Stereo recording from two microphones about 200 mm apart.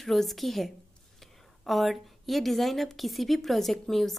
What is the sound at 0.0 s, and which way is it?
A woman's voice, centre (ahead or behind).